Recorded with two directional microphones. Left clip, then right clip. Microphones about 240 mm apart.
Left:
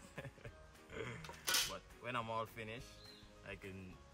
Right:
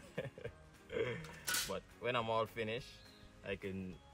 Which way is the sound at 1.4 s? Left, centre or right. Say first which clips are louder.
Left 3 dB; left.